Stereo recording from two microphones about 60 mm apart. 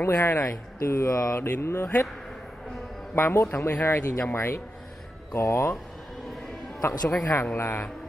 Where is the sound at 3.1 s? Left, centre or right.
Left.